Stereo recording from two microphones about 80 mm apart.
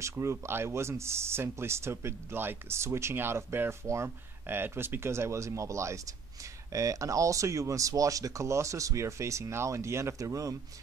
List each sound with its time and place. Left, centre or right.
0.0 s speech: right